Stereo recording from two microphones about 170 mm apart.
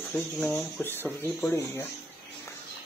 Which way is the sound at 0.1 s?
10° left (ahead or behind).